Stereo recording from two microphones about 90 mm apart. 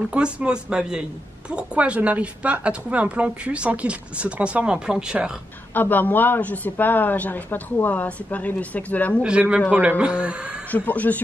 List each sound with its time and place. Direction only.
0.1 s a woman's voice: 10° right (ahead or behind)
5.8 s a man's voice: 20° left (ahead or behind)
9.2 s a woman's voice: 15° right (ahead or behind)
10.7 s speech: 15° left (ahead or behind)